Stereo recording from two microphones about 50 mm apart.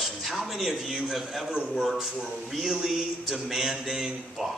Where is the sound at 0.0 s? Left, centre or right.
Centre.